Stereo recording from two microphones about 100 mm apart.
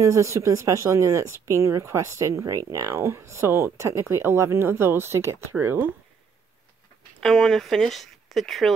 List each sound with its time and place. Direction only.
0.0 s speech: 30° right (ahead or behind)
7.2 s speech: 5° left (ahead or behind)